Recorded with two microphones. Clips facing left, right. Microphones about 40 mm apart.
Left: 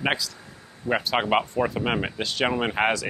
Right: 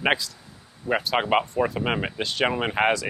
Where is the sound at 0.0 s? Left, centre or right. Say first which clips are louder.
Right 2 dB; centre.